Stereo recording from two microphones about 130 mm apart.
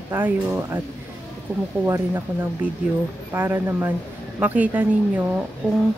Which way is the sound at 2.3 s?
15° right (ahead or behind).